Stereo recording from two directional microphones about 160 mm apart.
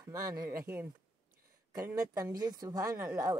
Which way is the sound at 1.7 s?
20° right (ahead or behind).